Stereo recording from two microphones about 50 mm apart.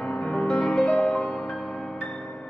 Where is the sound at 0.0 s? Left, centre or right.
Left.